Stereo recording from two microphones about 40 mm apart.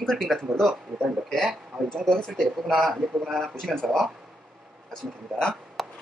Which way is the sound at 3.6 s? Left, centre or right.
Centre.